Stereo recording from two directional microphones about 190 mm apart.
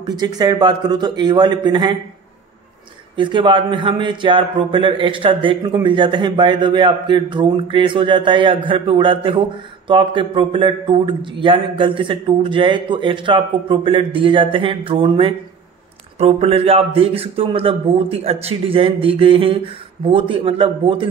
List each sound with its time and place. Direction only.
0.2 s a man's voice: 20° right (ahead or behind)
3.2 s a man's voice: 25° right (ahead or behind)